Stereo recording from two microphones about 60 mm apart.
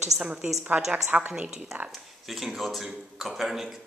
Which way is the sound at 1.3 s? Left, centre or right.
Centre.